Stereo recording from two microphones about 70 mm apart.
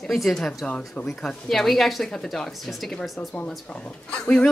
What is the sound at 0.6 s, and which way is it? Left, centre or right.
Speech, centre.